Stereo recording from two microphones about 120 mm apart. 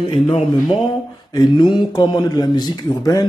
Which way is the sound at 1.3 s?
35° left (ahead or behind).